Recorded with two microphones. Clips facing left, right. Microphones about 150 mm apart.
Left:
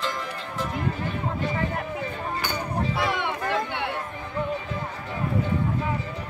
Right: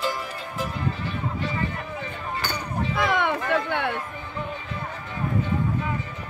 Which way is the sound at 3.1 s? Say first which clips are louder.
Right 4 dB; 50° right (ahead or behind).